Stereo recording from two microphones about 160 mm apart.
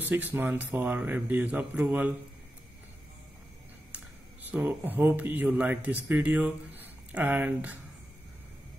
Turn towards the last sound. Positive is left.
turn(degrees=-10)  # may be behind; listen again after turning